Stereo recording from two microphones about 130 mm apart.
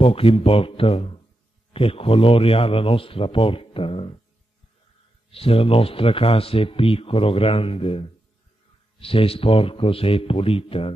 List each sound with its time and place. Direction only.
0.0 s speech: 45° left (ahead or behind)
5.3 s speech: 45° left (ahead or behind)
9.0 s speech: 45° left (ahead or behind)